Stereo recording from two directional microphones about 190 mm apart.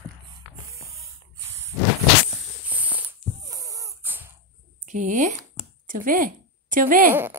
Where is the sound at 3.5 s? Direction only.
20° right (ahead or behind).